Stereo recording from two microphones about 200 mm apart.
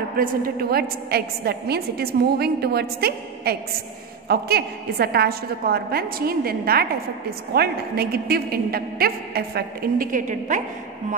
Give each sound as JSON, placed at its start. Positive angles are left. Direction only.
{"t": 0.2, "sound": "a woman's voice", "side_deg": -50}